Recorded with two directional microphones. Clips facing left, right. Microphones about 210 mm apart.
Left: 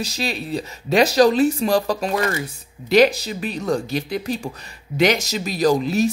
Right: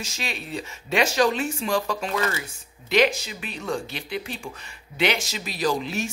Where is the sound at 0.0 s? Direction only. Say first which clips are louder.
Left 8 dB; 35° left (ahead or behind).